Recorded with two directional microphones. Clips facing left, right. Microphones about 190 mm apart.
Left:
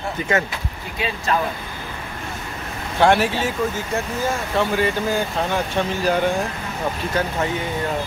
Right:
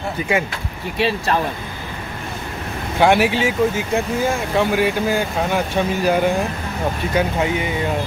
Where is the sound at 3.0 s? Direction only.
10° right (ahead or behind).